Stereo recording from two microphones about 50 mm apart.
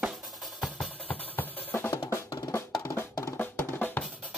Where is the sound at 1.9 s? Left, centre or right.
Left.